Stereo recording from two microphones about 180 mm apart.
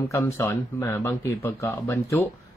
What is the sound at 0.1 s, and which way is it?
Speech, 15° left (ahead or behind).